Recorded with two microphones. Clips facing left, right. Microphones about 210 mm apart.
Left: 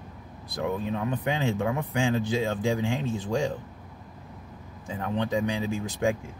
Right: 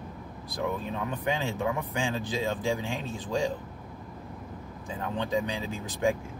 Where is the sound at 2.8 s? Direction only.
15° left (ahead or behind).